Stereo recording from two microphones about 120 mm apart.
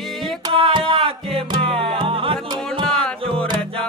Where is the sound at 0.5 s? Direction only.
50° right (ahead or behind).